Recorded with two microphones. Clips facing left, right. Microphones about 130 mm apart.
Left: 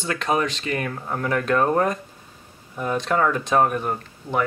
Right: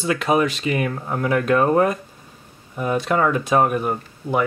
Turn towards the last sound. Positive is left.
turn(degrees=-5)  # may be behind; listen again after turning